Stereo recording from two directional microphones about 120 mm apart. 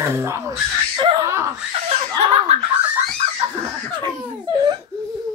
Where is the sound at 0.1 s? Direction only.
20° right (ahead or behind).